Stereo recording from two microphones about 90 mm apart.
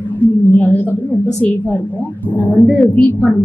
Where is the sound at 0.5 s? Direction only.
20° left (ahead or behind).